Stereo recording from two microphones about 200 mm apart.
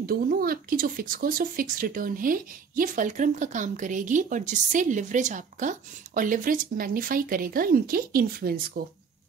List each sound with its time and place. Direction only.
0.0 s speech: 45° right (ahead or behind)